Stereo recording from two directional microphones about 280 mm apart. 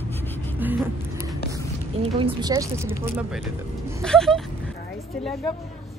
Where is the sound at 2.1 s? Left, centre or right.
Centre.